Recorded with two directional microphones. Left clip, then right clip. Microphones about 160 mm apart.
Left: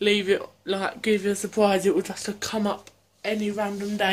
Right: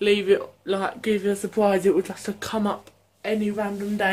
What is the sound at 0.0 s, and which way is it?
Speech, 5° left (ahead or behind).